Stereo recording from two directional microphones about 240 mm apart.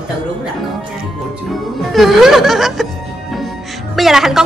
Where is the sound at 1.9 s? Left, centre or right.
Centre.